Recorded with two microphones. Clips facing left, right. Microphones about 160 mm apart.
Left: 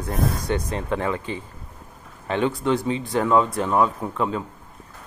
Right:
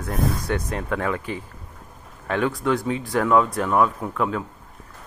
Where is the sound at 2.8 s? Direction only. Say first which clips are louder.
Even; centre (ahead or behind).